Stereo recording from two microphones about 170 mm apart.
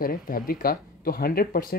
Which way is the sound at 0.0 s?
60° left (ahead or behind).